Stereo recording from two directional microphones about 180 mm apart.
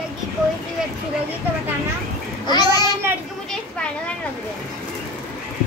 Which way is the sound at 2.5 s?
20° left (ahead or behind).